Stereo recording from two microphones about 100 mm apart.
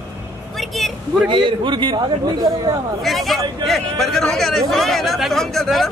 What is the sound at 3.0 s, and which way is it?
Speech, centre (ahead or behind).